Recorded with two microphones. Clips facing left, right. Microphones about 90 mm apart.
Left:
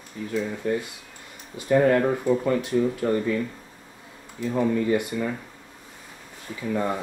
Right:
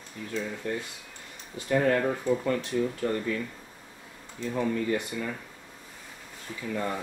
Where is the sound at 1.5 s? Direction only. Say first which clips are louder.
Left 5 dB; 5° left (ahead or behind).